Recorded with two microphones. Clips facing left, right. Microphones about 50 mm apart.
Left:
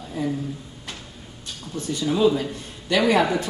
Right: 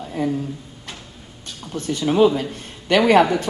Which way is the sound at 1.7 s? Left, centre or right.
Right.